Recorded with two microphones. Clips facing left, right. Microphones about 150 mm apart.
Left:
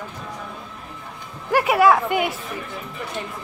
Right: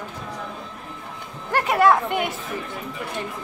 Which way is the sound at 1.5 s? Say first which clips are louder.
Left 2 dB; 5° left (ahead or behind).